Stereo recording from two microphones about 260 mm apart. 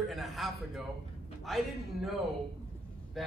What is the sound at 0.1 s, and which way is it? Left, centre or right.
Speech, centre.